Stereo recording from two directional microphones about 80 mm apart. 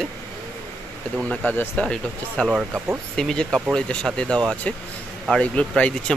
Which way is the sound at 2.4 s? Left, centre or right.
Centre.